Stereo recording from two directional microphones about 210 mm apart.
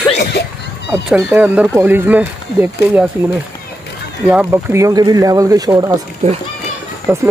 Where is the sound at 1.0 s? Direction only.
10° right (ahead or behind).